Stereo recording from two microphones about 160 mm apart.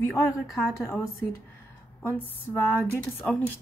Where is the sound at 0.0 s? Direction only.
15° left (ahead or behind).